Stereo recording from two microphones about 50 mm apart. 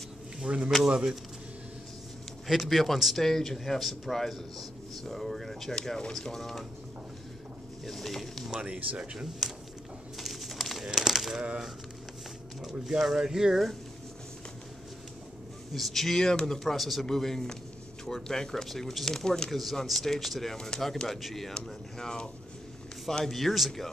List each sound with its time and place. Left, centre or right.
0.7 s speech: centre
2.4 s speech: centre
7.8 s speech: centre
8.5 s speech: centre
9.4 s a sound: centre
10.1 s pigeon: centre
10.9 s a sound: centre
12.8 s speech: centre
15.7 s speech: centre